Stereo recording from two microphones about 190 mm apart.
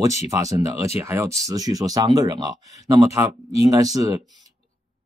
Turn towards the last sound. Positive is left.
turn(degrees=-20)  # may be behind; listen again after turning